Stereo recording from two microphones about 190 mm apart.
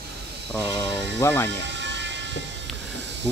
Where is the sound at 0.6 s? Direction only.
15° left (ahead or behind).